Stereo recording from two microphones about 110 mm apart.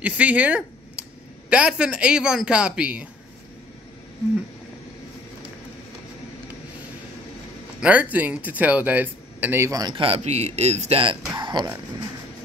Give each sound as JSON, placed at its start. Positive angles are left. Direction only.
{"t": 0.0, "sound": "speech", "side_deg": -15}
{"t": 7.8, "sound": "speech", "side_deg": -15}
{"t": 9.7, "sound": "a man's voice", "side_deg": -35}
{"t": 9.9, "sound": "speech", "side_deg": -65}
{"t": 11.3, "sound": "speech", "side_deg": -40}